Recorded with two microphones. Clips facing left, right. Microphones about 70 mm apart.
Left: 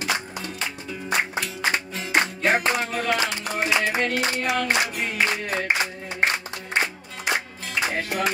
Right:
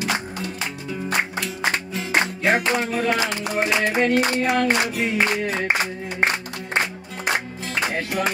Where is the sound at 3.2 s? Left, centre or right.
Right.